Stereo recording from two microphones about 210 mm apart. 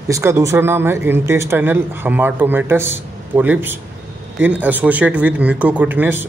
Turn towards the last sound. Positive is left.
turn(degrees=-10)  # may be behind; listen again after turning